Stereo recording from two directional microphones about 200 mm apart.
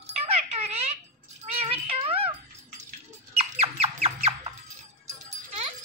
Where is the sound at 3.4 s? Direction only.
30° right (ahead or behind).